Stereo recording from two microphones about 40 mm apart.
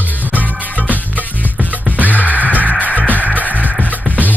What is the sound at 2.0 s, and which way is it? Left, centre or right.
Music, right.